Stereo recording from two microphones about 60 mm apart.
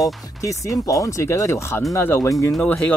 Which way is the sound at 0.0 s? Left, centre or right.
Left.